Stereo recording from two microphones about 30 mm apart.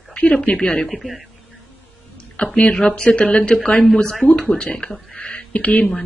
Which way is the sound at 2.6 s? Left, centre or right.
Left.